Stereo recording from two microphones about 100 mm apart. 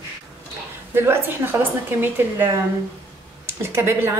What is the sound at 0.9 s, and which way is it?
A woman's voice, 25° right (ahead or behind).